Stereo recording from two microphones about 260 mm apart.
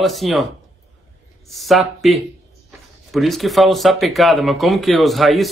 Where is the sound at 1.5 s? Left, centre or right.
Centre.